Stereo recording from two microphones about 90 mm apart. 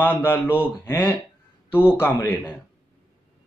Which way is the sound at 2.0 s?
20° left (ahead or behind).